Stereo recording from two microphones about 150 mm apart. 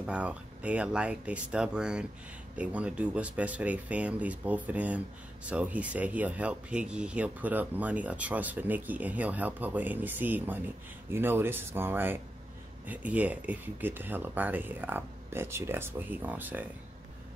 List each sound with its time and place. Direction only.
0.0 s speech: 10° right (ahead or behind)